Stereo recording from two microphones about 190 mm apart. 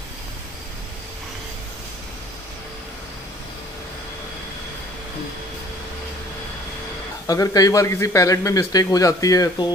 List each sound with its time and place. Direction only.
7.2 s a man's voice: 20° left (ahead or behind)